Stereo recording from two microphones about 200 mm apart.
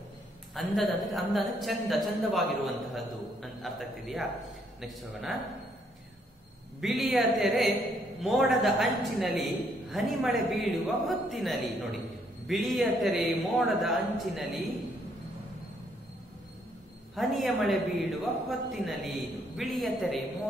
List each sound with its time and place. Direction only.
0.6 s a man's voice: centre (ahead or behind)
6.8 s a man's voice: centre (ahead or behind)
17.1 s a man's voice: centre (ahead or behind)